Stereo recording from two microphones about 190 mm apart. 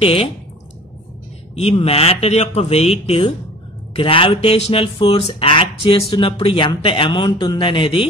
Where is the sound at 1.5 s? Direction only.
30° left (ahead or behind).